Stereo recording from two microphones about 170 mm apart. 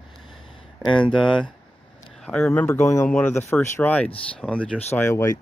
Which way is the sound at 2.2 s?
10° left (ahead or behind).